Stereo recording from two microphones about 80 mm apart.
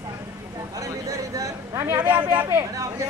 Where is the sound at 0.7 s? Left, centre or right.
Right.